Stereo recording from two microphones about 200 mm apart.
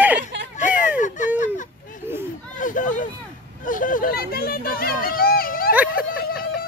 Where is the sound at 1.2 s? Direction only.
40° left (ahead or behind).